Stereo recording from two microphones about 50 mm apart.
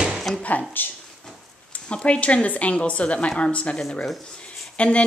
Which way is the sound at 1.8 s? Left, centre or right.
Left.